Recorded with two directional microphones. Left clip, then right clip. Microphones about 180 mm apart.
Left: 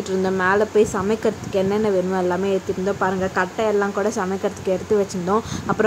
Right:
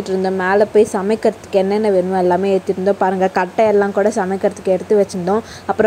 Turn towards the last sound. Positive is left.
turn(degrees=-20)  # may be behind; listen again after turning